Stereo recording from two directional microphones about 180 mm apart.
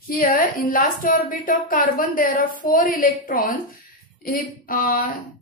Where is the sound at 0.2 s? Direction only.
55° left (ahead or behind).